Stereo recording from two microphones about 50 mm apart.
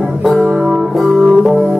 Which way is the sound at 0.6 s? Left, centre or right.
Centre.